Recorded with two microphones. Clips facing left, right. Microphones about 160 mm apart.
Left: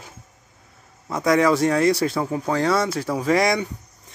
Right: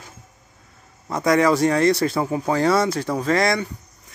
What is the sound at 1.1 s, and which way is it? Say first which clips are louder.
Speech: even; centre (ahead or behind).